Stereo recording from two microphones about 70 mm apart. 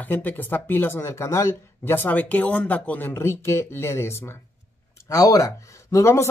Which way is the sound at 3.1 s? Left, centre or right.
Left.